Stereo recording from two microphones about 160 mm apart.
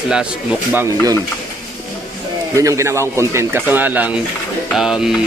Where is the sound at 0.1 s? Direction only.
10° right (ahead or behind).